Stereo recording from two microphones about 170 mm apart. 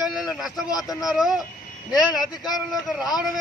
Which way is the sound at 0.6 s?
20° left (ahead or behind).